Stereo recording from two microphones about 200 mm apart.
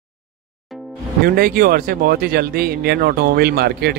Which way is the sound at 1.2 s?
45° right (ahead or behind).